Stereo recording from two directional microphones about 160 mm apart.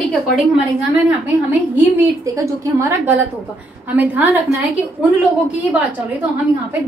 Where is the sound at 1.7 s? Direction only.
15° right (ahead or behind).